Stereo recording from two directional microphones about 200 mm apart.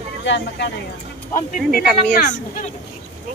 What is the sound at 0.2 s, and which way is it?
Speech, 65° left (ahead or behind).